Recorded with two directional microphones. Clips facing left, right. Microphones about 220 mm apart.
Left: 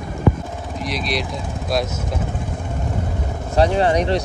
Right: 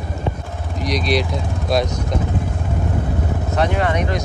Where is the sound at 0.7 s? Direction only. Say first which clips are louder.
Right 5 dB; centre (ahead or behind).